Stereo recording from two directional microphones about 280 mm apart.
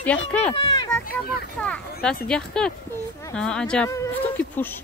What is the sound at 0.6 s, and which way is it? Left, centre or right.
Speech, centre.